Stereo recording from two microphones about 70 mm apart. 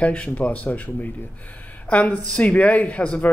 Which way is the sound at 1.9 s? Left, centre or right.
Centre.